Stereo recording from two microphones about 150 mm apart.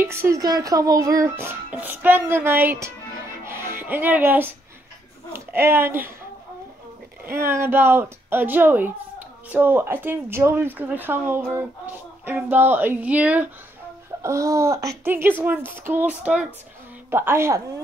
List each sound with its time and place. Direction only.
0.0 s speech: 15° right (ahead or behind)
7.2 s speech: 15° right (ahead or behind)
14.2 s speech: 20° right (ahead or behind)